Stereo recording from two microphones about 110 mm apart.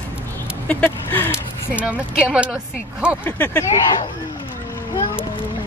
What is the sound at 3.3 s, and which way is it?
Speech, 20° left (ahead or behind).